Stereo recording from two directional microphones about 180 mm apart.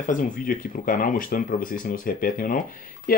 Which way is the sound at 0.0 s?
50° left (ahead or behind).